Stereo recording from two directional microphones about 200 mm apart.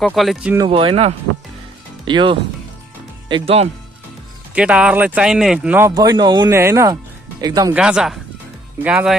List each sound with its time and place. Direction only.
0.0 s speech: centre (ahead or behind)
0.7 s speech: 25° right (ahead or behind)
4.6 s speech: 5° right (ahead or behind)
7.7 s speech: 5° right (ahead or behind)